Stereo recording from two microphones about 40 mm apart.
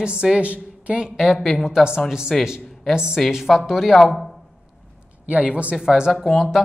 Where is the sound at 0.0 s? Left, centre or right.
Right.